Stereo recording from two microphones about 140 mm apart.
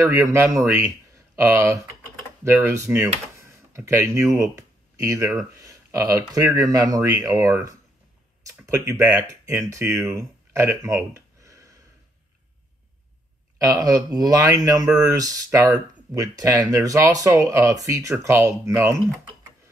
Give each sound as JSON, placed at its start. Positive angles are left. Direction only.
{"t": 0.0, "sound": "speech", "side_deg": -20}
{"t": 3.3, "sound": "a sound", "side_deg": -20}
{"t": 5.6, "sound": "speech", "side_deg": -20}
{"t": 8.5, "sound": "speech", "side_deg": -20}
{"t": 11.1, "sound": "a sound", "side_deg": -20}
{"t": 13.6, "sound": "speech", "side_deg": -25}